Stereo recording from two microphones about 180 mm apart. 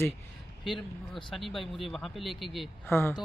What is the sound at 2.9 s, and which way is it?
Speech, 15° left (ahead or behind).